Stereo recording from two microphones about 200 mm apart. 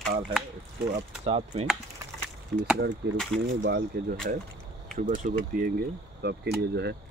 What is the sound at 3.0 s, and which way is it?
Speech, 55° right (ahead or behind).